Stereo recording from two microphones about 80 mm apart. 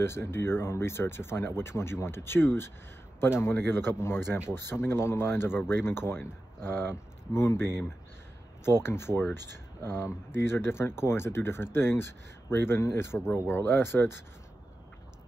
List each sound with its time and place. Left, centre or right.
0.0 s speech: left